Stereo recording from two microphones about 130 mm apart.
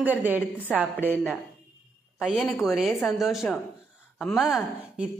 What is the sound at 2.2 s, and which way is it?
A woman's voice, centre (ahead or behind).